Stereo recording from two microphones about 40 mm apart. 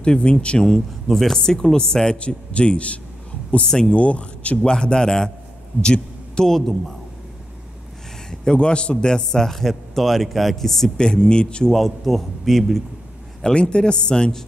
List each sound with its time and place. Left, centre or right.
0.0 s a man's voice: left
0.7 s speech: centre
2.1 s a man's voice: left
3.6 s speech: centre
3.9 s a man's voice: left
4.6 s a man's voice: centre
6.4 s speech: centre
8.3 s speech: left
9.6 s speech: centre
11.0 s a man's voice: left
11.7 s speech: centre
13.4 s a man's voice: left